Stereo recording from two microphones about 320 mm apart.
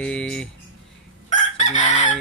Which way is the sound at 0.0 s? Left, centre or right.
Centre.